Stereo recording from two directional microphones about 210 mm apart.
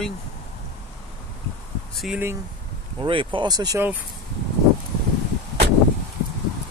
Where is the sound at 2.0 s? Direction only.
5° right (ahead or behind).